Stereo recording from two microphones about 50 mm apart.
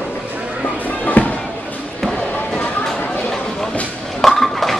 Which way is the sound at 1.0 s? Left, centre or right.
Left.